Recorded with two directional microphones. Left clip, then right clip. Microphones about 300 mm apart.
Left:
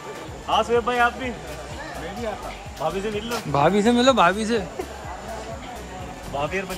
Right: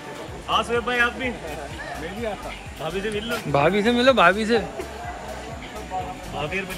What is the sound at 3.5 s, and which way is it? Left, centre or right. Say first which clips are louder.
Speech: left 1 dB; centre.